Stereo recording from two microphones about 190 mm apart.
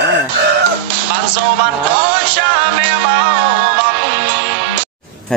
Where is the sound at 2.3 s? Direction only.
65° right (ahead or behind).